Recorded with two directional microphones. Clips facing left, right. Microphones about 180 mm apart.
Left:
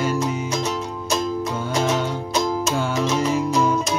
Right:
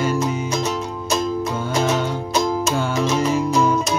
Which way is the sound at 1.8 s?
5° right (ahead or behind).